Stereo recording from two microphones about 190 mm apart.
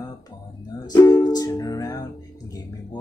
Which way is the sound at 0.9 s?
20° left (ahead or behind).